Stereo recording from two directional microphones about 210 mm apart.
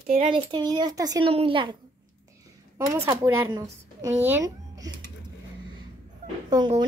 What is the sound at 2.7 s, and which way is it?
Speech, 15° right (ahead or behind).